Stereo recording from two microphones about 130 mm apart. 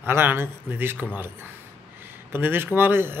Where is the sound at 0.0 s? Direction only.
15° right (ahead or behind).